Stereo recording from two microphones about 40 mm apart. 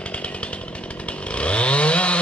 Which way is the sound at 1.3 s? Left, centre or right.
Left.